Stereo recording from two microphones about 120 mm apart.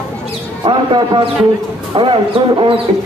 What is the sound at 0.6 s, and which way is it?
Speech, 40° right (ahead or behind).